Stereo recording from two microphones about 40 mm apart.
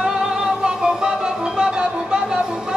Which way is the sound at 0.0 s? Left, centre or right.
Centre.